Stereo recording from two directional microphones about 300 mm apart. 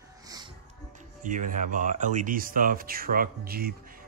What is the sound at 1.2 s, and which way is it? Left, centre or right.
Speech, right.